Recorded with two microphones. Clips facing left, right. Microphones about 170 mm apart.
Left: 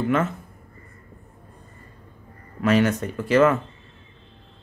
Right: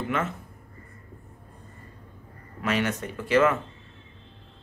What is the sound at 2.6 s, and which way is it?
Speech, 40° left (ahead or behind).